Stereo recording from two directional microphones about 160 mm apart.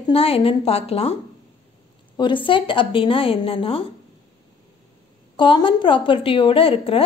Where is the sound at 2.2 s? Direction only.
30° left (ahead or behind).